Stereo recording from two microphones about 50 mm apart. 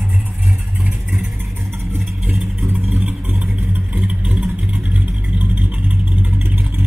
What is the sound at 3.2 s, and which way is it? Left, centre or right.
Vehicle, right.